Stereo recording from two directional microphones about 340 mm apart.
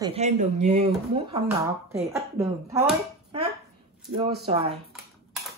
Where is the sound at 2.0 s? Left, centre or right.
Centre.